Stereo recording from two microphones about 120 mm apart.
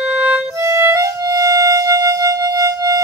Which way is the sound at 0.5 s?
25° right (ahead or behind).